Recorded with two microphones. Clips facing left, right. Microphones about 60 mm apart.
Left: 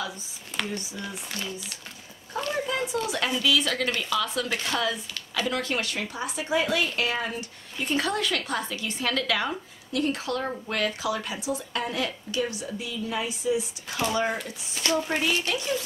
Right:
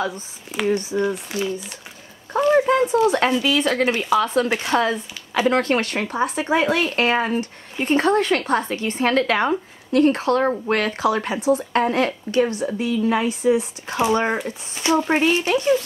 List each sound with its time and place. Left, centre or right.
0.7 s speech: right
2.5 s a sound: right
3.1 s speech: right
14.4 s speech: right
15.0 s speech: right